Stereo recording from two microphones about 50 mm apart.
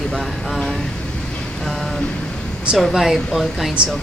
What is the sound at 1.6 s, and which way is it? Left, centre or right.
Speech, centre.